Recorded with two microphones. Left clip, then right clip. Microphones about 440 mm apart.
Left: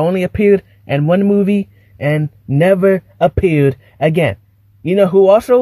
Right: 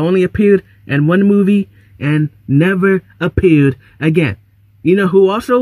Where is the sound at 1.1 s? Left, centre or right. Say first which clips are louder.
Even; left.